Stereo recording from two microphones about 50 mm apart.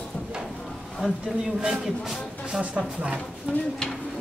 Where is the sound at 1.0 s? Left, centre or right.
Centre.